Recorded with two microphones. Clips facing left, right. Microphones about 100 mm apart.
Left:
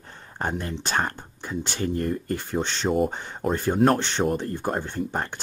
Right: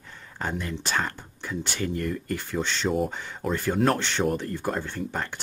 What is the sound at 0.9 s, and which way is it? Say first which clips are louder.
Speech: left 4 dB; 40° left (ahead or behind).